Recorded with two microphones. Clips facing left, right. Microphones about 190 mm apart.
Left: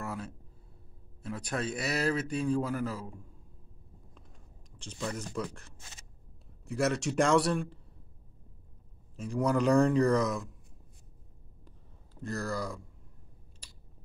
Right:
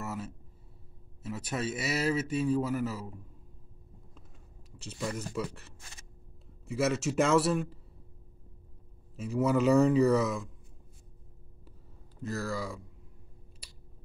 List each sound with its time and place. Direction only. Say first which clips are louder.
0.0 s a sound: even; 5° right (ahead or behind)
1.2 s speech: even; 5° right (ahead or behind)
4.7 s speech: right 1 dB; 5° right (ahead or behind)
9.1 s speech: right 1 dB; 5° right (ahead or behind)
12.2 s speech: even; centre (ahead or behind)